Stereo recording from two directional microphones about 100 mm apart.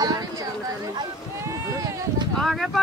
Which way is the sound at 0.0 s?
35° right (ahead or behind).